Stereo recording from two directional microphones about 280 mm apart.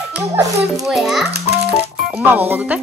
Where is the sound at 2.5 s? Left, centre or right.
Centre.